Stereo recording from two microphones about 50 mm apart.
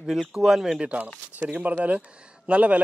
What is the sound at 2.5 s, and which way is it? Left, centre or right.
Speech, right.